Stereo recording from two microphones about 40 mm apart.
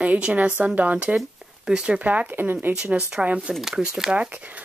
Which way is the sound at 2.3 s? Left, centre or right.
Right.